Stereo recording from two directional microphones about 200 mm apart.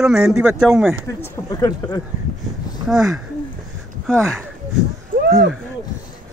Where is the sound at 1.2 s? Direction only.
20° left (ahead or behind).